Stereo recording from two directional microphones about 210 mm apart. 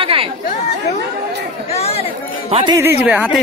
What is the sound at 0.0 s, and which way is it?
Chatter, 25° right (ahead or behind).